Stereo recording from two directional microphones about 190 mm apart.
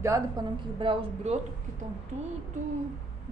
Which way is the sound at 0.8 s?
30° right (ahead or behind).